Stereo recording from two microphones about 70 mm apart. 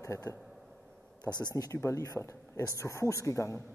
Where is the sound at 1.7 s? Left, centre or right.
Left.